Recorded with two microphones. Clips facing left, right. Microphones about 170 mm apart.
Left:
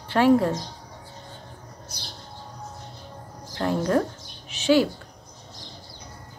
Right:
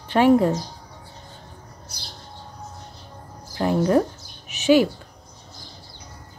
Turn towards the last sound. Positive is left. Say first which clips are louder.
# right 3 dB
turn(degrees=-15)  # may be behind; listen again after turning